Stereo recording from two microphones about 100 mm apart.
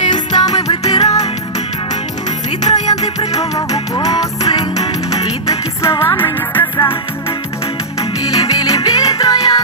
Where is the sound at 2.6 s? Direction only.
40° left (ahead or behind).